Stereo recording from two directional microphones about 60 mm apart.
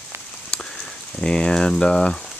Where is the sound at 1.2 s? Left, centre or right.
Centre.